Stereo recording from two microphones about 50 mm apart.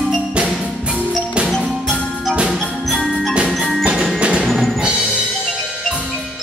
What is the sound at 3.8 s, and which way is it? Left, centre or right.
Wood block, centre.